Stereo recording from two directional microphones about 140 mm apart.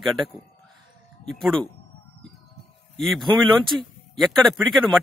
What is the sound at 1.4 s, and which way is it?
Speech, 5° left (ahead or behind).